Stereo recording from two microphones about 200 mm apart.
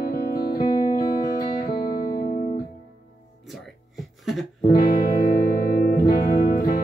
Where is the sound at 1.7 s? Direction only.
45° left (ahead or behind).